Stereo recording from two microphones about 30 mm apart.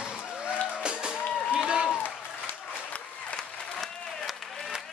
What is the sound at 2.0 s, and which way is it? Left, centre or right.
Applause, left.